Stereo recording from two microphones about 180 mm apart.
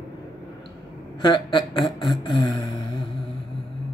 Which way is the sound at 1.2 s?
25° left (ahead or behind).